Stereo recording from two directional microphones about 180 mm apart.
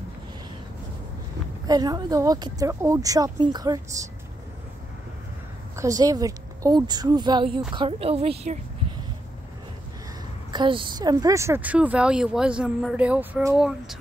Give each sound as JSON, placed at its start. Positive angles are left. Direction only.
{"t": 1.7, "sound": "speech", "side_deg": -20}
{"t": 5.8, "sound": "a woman's voice", "side_deg": -20}
{"t": 10.5, "sound": "speech", "side_deg": -25}
{"t": 13.6, "sound": "speech", "side_deg": -5}